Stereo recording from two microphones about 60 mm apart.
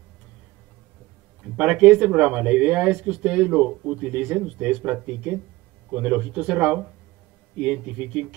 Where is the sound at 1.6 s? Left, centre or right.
Centre.